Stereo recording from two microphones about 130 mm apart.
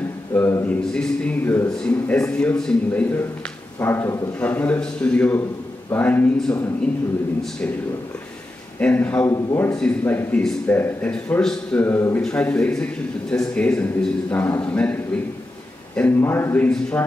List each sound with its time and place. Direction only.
0.3 s a sound: 15° left (ahead or behind)
0.9 s a man's voice: 10° left (ahead or behind)
8.7 s a man's voice: 10° left (ahead or behind)
9.2 s a man's voice: 25° left (ahead or behind)
9.8 s a man's voice: 10° left (ahead or behind)
16.0 s a man's voice: 15° left (ahead or behind)